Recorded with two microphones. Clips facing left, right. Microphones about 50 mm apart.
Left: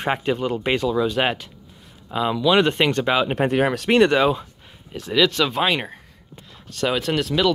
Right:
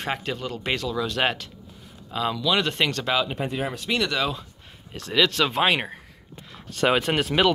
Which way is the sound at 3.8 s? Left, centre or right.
Left.